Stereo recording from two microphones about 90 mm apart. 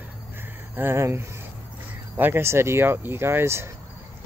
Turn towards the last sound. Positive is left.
turn(degrees=-30)  # may be behind; listen again after turning